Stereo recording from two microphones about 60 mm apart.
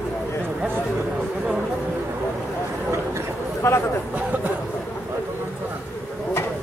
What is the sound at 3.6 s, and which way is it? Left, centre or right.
Speech, left.